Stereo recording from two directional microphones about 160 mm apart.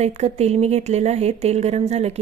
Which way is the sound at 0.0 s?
40° right (ahead or behind).